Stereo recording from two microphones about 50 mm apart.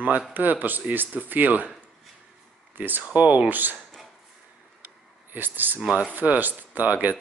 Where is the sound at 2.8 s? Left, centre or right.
Right.